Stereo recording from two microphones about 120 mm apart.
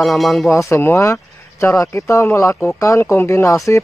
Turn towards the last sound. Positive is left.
turn(degrees=25)  # may be behind; listen again after turning